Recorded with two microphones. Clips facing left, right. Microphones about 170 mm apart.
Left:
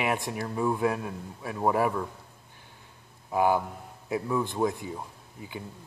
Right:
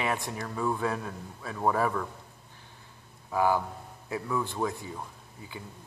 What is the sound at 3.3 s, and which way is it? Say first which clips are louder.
A man's voice: left 2 dB; 20° left (ahead or behind).